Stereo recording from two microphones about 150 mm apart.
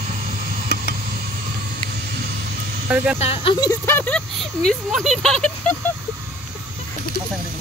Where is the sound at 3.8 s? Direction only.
10° left (ahead or behind).